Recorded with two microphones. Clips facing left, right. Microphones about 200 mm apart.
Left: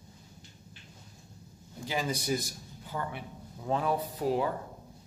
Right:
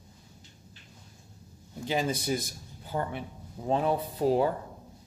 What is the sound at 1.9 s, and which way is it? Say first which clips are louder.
Speech: right 3 dB; 25° right (ahead or behind).